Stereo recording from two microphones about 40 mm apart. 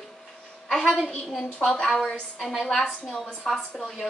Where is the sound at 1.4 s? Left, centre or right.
Left.